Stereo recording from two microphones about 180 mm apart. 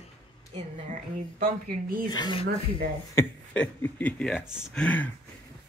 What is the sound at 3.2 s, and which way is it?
Speech, 10° left (ahead or behind).